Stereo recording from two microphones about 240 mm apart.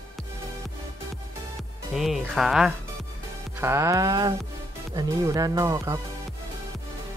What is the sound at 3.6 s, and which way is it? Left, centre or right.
Speech, centre.